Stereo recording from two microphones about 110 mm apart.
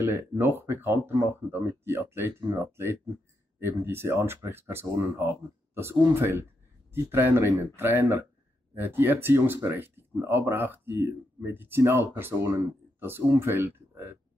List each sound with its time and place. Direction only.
0.0 s speech: 25° right (ahead or behind)